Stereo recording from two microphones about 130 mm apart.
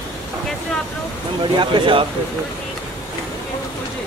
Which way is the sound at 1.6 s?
40° right (ahead or behind).